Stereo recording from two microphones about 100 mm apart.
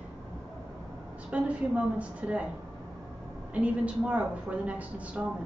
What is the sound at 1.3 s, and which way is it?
A woman's voice, 10° right (ahead or behind).